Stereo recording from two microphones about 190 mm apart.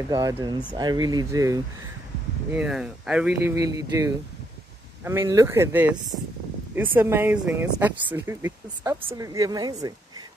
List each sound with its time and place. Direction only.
0.1 s speech: 20° right (ahead or behind)
2.5 s speech: 5° right (ahead or behind)
3.5 s speech: 15° right (ahead or behind)